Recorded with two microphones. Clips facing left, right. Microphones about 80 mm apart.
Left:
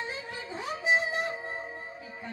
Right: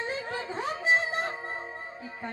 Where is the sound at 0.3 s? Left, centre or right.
Right.